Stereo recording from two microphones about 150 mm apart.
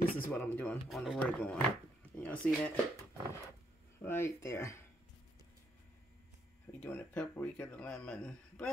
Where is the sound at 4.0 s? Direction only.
15° left (ahead or behind).